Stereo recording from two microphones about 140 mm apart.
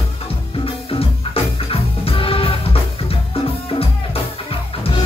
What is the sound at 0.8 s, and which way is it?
Music, 40° left (ahead or behind).